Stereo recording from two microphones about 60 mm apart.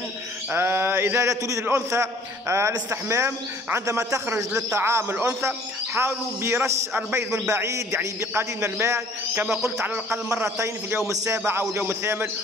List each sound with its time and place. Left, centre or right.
0.6 s mantra: right
1.2 s a man's voice: right
3.8 s a man's voice: right
4.7 s a man's voice: right
6.9 s a man's voice: right
7.4 s a man's voice: right
11.1 s a man's voice: right
11.9 s a man's voice: right